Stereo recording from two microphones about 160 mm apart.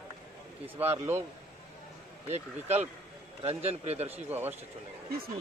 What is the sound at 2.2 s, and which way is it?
Speech, 40° right (ahead or behind).